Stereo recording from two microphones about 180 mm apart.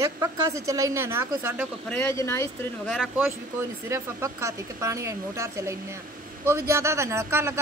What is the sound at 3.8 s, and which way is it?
Speech, 15° right (ahead or behind).